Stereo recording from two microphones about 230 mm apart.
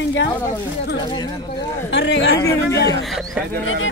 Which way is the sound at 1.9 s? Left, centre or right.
Left.